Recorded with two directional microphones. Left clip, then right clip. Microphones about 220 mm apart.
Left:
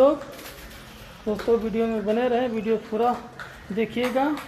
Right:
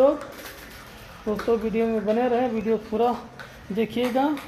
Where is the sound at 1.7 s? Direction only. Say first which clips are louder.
Right 1 dB; 10° right (ahead or behind).